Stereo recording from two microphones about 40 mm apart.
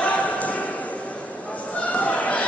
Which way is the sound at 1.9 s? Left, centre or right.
Left.